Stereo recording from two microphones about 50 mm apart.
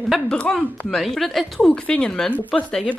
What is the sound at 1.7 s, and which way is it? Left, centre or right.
Speech, left.